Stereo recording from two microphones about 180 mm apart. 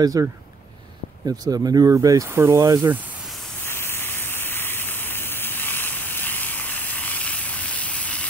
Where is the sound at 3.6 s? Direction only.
15° left (ahead or behind).